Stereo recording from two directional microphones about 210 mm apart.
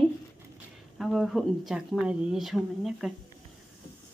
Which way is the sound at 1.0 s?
Centre (ahead or behind).